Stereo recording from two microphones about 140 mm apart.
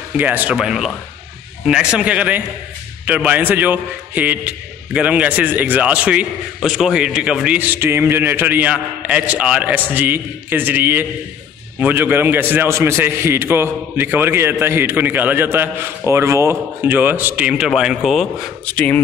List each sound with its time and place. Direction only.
0.2 s a man's voice: 10° right (ahead or behind)
18.7 s speech: 10° left (ahead or behind)